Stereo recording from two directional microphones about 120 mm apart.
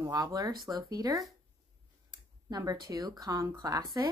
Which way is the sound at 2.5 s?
30° right (ahead or behind).